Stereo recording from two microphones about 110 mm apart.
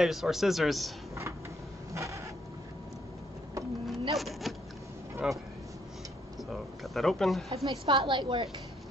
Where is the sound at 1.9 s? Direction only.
30° right (ahead or behind).